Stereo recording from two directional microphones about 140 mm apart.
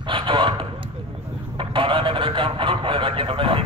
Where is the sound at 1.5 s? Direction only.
35° right (ahead or behind).